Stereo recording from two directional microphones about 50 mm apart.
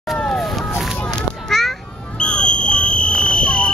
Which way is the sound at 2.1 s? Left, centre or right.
Left.